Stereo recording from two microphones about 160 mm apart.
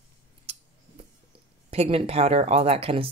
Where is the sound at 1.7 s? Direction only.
40° right (ahead or behind).